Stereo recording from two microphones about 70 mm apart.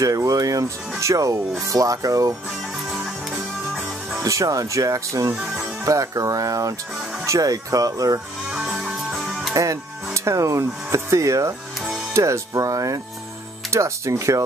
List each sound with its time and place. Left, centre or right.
0.0 s speech: right
2.9 s music: centre
4.2 s speech: right
8.5 s music: centre
9.1 s music: centre
9.5 s music: right
10.1 s speech: right